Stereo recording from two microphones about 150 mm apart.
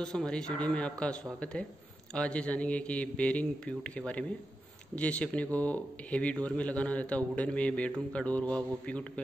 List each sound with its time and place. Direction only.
0.0 s speech: 5° left (ahead or behind)